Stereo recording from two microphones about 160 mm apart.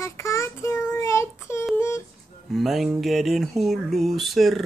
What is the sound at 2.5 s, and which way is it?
Speech, centre (ahead or behind).